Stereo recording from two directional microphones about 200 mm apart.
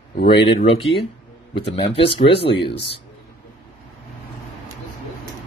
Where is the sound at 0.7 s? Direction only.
25° left (ahead or behind).